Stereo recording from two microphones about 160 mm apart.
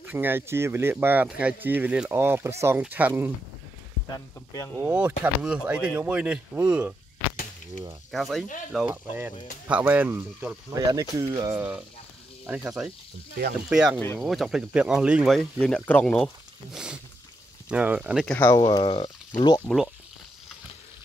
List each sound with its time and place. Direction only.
0.0 s speech: 10° right (ahead or behind)
4.7 s speech: 10° right (ahead or behind)
8.1 s speech: centre (ahead or behind)
8.7 s speech: 10° right (ahead or behind)
12.4 s speech: 5° right (ahead or behind)
15.6 s speech: 5° left (ahead or behind)
16.7 s speech: 5° right (ahead or behind)
18.2 s speech: 5° left (ahead or behind)
18.5 s speech: 30° left (ahead or behind)